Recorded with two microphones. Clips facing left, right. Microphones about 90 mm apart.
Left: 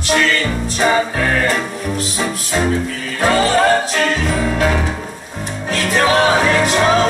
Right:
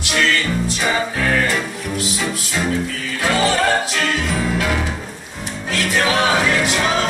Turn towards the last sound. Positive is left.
turn(degrees=40)  # may be behind; listen again after turning